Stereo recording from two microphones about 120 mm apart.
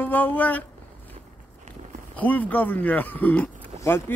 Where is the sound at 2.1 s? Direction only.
15° left (ahead or behind).